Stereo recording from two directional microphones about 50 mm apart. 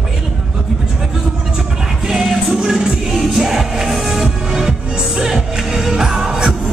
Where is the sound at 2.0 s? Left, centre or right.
Centre.